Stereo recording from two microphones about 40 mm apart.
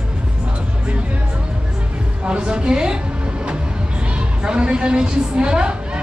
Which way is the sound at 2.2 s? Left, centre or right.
Right.